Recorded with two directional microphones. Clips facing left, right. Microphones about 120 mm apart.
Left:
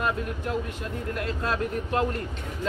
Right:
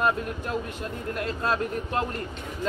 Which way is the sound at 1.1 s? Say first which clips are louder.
Right 2 dB; 35° right (ahead or behind).